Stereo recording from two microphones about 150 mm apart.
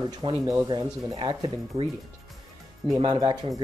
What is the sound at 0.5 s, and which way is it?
Speech, 30° right (ahead or behind).